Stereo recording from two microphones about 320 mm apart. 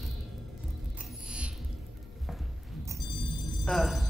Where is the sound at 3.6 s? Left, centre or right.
Centre.